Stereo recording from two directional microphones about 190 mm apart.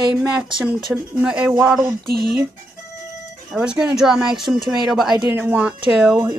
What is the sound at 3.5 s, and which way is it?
Speech, 5° right (ahead or behind).